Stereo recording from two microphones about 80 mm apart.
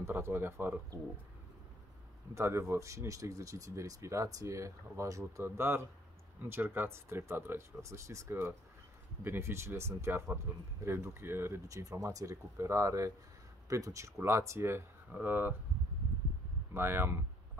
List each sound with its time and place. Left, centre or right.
0.0 s speech: right
2.3 s speech: right
5.4 s speech: right
11.6 s speech: right
15.0 s speech: right
16.7 s speech: right